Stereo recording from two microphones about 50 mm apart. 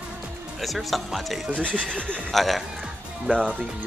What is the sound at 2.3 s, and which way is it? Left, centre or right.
Speech, centre.